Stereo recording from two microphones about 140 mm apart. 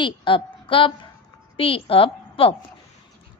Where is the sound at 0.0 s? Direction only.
35° left (ahead or behind).